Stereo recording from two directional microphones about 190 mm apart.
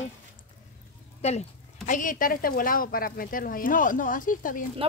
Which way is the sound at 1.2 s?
35° left (ahead or behind).